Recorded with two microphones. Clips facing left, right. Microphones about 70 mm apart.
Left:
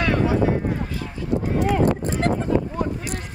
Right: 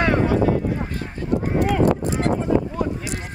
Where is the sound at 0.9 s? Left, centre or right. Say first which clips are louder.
Right 1 dB; right.